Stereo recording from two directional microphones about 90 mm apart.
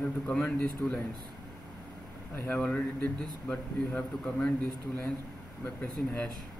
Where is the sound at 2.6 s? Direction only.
10° left (ahead or behind).